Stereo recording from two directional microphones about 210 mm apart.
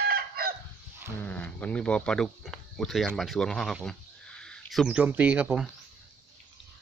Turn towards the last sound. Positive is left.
turn(degrees=-5)  # may be behind; listen again after turning